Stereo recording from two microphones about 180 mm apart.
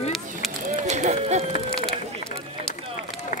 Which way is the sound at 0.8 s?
40° right (ahead or behind).